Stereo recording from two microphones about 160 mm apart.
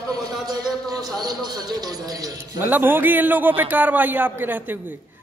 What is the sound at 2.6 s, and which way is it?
A man's voice, 10° right (ahead or behind).